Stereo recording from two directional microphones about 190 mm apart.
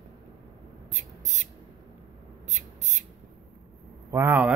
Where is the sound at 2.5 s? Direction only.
40° right (ahead or behind).